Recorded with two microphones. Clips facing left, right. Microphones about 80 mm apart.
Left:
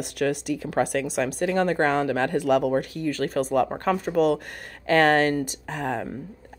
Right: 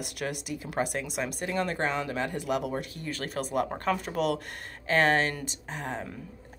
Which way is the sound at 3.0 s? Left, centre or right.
Left.